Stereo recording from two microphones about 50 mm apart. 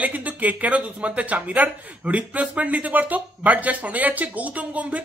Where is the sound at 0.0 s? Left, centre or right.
Right.